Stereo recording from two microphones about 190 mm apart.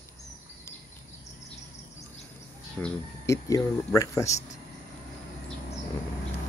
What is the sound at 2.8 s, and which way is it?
Speech, 10° left (ahead or behind).